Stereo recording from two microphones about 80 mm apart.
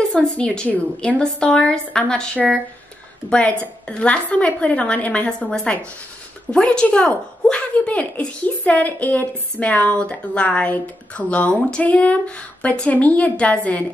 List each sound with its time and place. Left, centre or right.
0.0 s a woman's voice: centre